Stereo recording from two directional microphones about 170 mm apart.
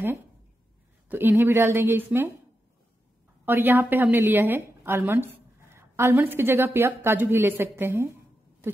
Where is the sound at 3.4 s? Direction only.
10° right (ahead or behind).